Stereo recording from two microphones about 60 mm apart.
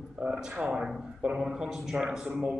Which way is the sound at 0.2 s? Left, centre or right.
Centre.